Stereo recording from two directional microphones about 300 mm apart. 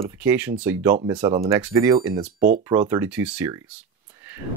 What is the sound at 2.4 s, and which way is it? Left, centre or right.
Speech, right.